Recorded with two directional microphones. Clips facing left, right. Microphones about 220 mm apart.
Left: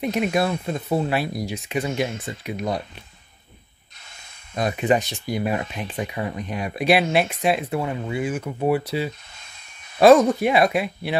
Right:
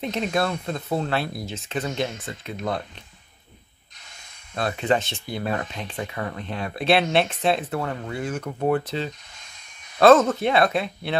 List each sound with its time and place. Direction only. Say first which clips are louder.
0.0 s speech: left 3 dB; 10° left (ahead or behind)
4.6 s speech: left 2 dB; 15° left (ahead or behind)